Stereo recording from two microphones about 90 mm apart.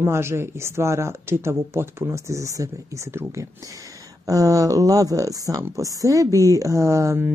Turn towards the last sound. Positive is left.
turn(degrees=-30)  # may be behind; listen again after turning